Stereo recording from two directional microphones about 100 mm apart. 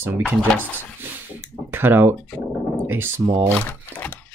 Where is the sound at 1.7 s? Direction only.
20° right (ahead or behind).